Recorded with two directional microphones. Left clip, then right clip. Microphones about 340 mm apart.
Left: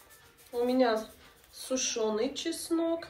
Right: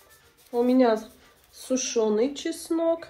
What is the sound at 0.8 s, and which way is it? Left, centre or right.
Speech, centre.